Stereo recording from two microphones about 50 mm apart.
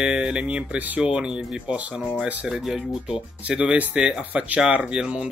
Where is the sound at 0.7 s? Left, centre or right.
Right.